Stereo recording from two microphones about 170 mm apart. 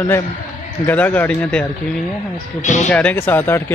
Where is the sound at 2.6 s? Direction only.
45° left (ahead or behind).